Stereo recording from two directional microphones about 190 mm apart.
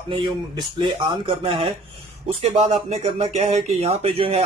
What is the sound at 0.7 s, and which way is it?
Speech, 25° right (ahead or behind).